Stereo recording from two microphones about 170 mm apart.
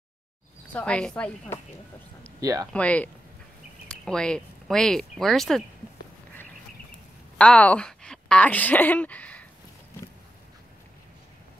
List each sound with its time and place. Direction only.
0.7 s a woman's voice: 5° left (ahead or behind)
2.4 s speech: 20° right (ahead or behind)
2.7 s a woman's voice: 10° left (ahead or behind)
7.3 s a woman's voice: 5° left (ahead or behind)